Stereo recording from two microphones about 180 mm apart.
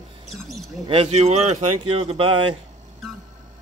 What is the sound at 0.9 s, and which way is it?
Speech, 35° right (ahead or behind).